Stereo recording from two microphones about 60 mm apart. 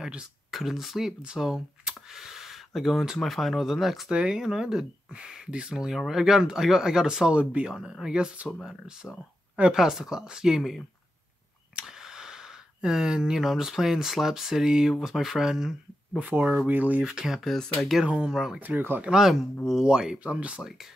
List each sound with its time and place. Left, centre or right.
0.0 s speech: centre
0.5 s speech: centre
4.1 s speech: centre
16.2 s speech: right
17.0 s speech: centre
18.0 s speech: centre
18.3 s speech: centre
18.6 s speech: right
19.0 s speech: centre